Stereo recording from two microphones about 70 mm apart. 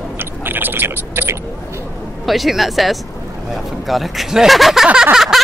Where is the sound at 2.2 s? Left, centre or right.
Centre.